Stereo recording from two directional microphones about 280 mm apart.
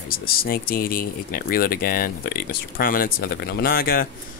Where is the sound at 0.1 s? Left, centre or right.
Left.